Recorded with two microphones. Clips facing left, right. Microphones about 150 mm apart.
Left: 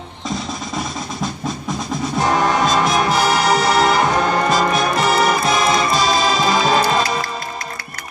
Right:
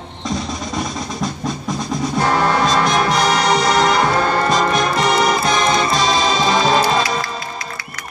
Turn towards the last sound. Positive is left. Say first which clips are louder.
# right 1 dB
turn(degrees=0)  # may be behind; listen again after turning